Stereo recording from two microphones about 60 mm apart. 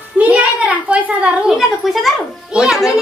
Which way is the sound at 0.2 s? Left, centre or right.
Right.